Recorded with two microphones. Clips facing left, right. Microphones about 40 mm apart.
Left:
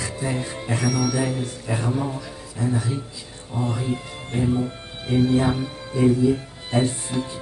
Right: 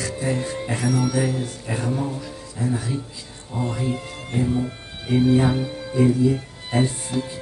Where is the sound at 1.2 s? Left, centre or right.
Centre.